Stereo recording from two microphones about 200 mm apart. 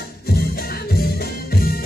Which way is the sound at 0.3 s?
50° left (ahead or behind).